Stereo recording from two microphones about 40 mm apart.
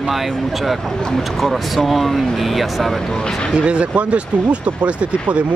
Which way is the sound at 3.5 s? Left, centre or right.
Right.